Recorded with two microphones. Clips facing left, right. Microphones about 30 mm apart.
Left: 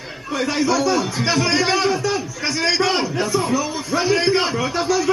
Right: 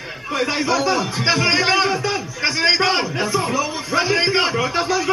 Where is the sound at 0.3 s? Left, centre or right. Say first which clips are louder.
Even; right.